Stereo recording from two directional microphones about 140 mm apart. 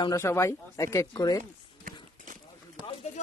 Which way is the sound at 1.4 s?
70° right (ahead or behind).